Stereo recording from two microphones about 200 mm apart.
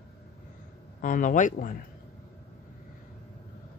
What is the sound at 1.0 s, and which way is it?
Speech, 40° left (ahead or behind).